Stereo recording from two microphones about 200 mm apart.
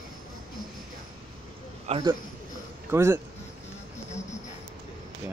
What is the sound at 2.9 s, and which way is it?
Speech, 15° right (ahead or behind).